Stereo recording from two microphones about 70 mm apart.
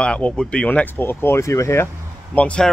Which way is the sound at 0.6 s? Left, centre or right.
Left.